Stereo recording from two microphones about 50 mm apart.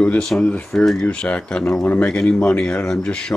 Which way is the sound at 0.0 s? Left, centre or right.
Left.